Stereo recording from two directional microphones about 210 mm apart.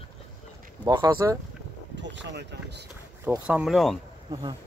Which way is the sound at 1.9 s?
60° right (ahead or behind).